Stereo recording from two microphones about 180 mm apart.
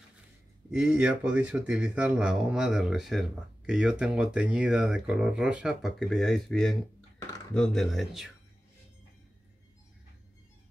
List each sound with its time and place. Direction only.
0.7 s speech: 5° right (ahead or behind)